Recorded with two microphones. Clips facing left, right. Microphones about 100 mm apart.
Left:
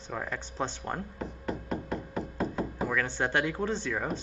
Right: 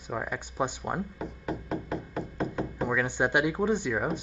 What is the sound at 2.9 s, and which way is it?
Speech, 15° right (ahead or behind).